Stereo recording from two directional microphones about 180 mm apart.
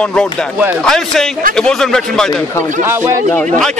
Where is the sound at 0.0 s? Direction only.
5° left (ahead or behind).